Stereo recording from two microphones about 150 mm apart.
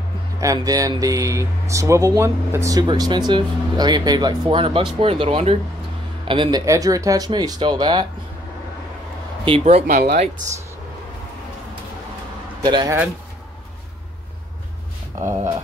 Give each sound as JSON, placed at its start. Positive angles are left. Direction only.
{"t": 0.4, "sound": "speech", "side_deg": -25}
{"t": 6.6, "sound": "speech", "side_deg": -20}
{"t": 9.4, "sound": "speech", "side_deg": -40}
{"t": 9.9, "sound": "speech", "side_deg": -90}
{"t": 12.6, "sound": "speech", "side_deg": -30}